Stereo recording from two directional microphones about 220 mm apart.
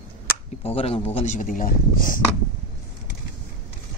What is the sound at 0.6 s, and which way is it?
Speech, 25° left (ahead or behind).